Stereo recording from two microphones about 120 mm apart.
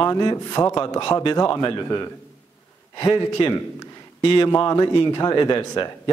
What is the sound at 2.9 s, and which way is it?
Speech, 35° left (ahead or behind).